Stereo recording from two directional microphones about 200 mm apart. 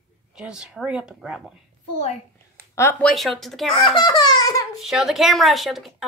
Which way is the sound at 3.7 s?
25° left (ahead or behind).